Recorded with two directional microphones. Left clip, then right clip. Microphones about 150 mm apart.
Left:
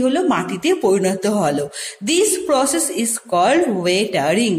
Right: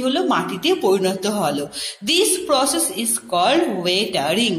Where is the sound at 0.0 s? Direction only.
50° left (ahead or behind).